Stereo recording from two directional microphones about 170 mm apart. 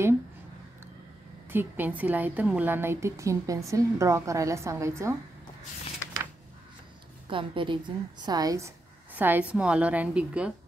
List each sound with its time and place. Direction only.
1.5 s a woman's voice: 10° right (ahead or behind)
7.2 s a woman's voice: 30° right (ahead or behind); by 10.5 s 5° right (ahead or behind)